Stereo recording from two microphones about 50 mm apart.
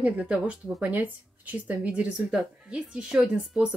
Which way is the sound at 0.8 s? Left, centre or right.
Right.